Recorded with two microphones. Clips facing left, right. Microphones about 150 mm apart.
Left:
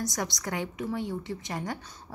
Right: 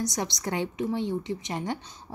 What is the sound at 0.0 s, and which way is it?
A woman's voice, 20° right (ahead or behind).